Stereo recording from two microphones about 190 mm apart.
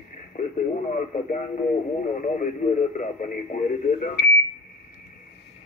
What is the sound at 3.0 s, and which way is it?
Speech, 40° left (ahead or behind).